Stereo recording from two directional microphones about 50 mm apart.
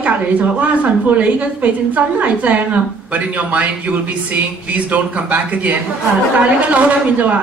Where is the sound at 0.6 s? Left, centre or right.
Right.